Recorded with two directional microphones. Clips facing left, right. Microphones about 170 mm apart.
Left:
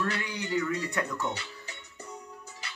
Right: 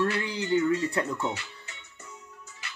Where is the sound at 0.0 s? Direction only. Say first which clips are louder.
Right 5 dB; 25° right (ahead or behind).